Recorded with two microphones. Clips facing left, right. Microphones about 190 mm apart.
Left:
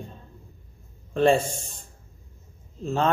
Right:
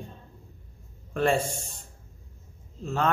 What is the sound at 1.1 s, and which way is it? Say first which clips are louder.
Speech: left 5 dB; 25° left (ahead or behind).